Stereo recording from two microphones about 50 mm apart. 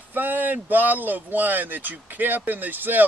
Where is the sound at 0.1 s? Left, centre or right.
Right.